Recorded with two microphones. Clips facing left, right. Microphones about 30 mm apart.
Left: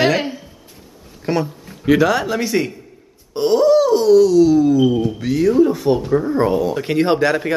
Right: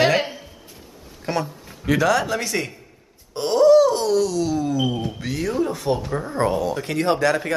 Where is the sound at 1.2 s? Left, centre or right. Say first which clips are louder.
Left 5 dB; centre.